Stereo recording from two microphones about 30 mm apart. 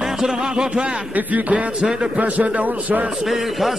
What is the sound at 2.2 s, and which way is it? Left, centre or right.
Speech, right.